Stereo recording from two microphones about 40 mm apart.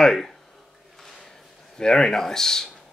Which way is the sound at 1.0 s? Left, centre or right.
Centre.